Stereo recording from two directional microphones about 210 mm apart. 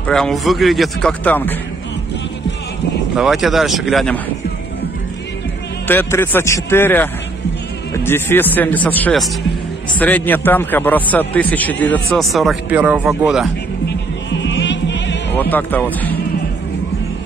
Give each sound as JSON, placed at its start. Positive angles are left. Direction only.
{"t": 0.0, "sound": "speech", "side_deg": 5}
{"t": 3.2, "sound": "speech", "side_deg": 0}
{"t": 5.9, "sound": "a man's voice", "side_deg": 10}
{"t": 13.8, "sound": "music", "side_deg": 60}
{"t": 15.5, "sound": "a man's voice", "side_deg": 10}